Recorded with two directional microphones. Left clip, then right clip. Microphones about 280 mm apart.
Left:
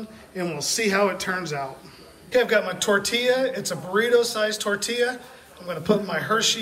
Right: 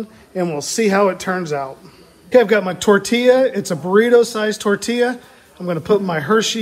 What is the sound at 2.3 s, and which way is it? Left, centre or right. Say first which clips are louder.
Speech: right 7 dB; centre.